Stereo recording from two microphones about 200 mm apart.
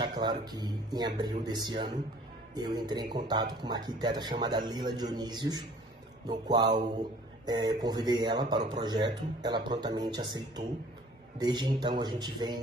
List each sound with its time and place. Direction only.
0.0 s a man's voice: 25° right (ahead or behind)